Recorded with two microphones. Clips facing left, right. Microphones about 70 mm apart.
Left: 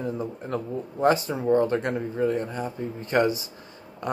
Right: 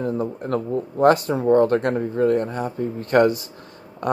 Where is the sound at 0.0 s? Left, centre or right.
Right.